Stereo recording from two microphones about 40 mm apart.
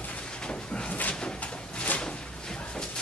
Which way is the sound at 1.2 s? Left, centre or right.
Left.